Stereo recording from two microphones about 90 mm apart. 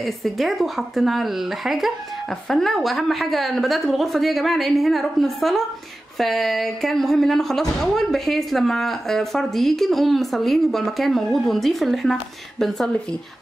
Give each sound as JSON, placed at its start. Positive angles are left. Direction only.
{"t": 0.0, "sound": "speech", "side_deg": 0}